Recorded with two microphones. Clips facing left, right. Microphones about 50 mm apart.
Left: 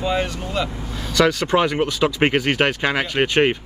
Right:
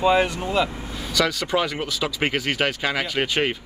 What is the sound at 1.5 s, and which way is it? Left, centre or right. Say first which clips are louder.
Speech: left 4 dB; centre.